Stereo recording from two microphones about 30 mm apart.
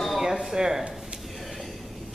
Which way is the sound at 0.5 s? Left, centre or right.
Right.